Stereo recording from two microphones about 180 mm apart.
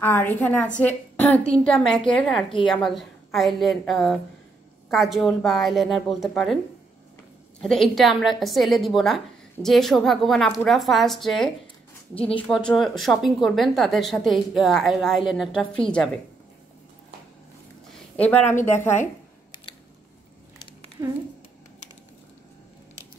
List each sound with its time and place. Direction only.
0.0 s a woman's voice: 10° left (ahead or behind)
7.6 s a woman's voice: centre (ahead or behind)
17.9 s a woman's voice: 5° left (ahead or behind)
21.0 s speech: 20° right (ahead or behind)